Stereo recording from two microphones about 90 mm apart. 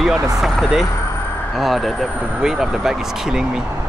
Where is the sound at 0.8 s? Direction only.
30° left (ahead or behind).